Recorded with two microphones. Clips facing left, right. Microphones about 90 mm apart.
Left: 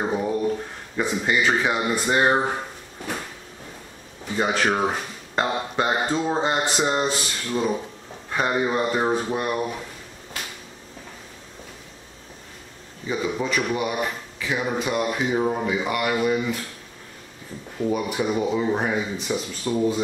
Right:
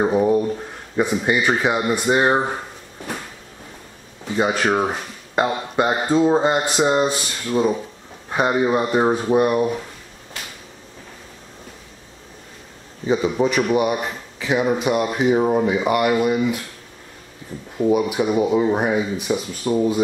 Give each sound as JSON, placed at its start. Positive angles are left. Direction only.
{"t": 0.0, "sound": "speech", "side_deg": -15}
{"t": 4.4, "sound": "speech", "side_deg": -10}
{"t": 13.1, "sound": "speech", "side_deg": -20}
{"t": 17.9, "sound": "speech", "side_deg": -10}